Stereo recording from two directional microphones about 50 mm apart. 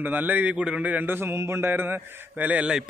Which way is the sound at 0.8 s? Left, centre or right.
Right.